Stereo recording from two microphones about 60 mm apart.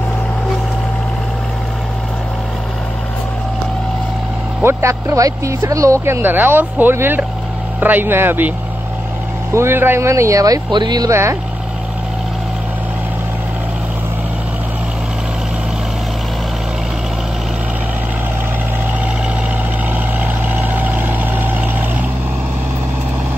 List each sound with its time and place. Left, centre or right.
4.6 s speech: right
5.0 s speech: right
6.0 s speech: right
9.5 s speech: right
10.4 s speech: right
20.4 s vehicle: right